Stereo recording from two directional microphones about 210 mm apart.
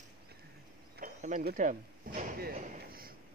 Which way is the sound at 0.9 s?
40° right (ahead or behind).